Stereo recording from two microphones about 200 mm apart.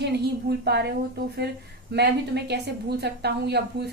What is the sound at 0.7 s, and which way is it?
A woman's voice, 55° right (ahead or behind).